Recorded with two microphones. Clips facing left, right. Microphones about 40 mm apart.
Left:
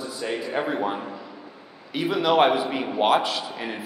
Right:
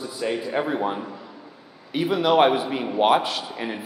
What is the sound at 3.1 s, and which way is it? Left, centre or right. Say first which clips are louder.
Speech: even; centre.